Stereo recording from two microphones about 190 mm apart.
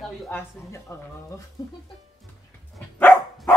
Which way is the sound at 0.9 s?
15° left (ahead or behind).